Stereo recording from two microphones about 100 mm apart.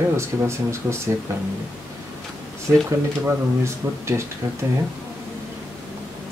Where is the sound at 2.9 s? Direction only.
30° right (ahead or behind).